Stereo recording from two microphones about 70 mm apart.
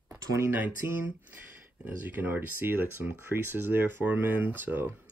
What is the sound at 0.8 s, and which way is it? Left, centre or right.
Speech, right.